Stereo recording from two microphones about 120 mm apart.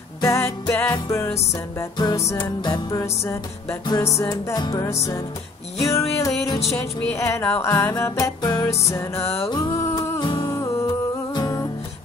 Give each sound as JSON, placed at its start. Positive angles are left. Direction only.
{"t": 0.2, "sound": "music", "side_deg": 25}
{"t": 4.0, "sound": "music", "side_deg": 30}
{"t": 8.0, "sound": "music", "side_deg": 30}
{"t": 8.6, "sound": "music", "side_deg": 25}